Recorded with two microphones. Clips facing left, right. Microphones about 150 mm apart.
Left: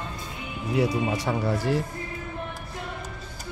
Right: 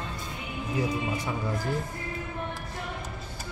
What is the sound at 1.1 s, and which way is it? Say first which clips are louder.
Speech: left 5 dB; 85° left.